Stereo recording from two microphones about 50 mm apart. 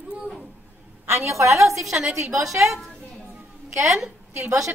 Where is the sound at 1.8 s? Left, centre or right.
Centre.